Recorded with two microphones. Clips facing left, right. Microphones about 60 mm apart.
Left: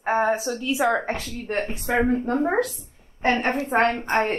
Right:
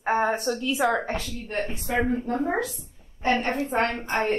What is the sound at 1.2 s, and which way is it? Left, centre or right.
Speech, left.